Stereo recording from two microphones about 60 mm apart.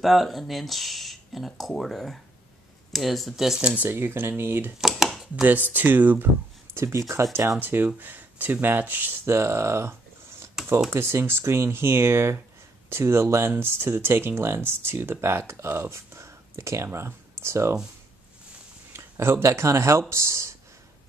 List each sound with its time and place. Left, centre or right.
0.0 s speech: centre
3.6 s speech: right
3.9 s speech: right
4.7 s a sound: centre
5.3 s speech: right
6.7 s speech: right
7.5 s speech: right
9.2 s speech: right
10.6 s computer keyboard: centre
10.9 s speech: right
18.9 s speech: right